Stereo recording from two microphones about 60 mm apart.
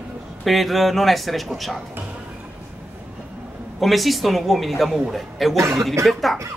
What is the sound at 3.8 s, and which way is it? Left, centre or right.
A woman's voice, centre.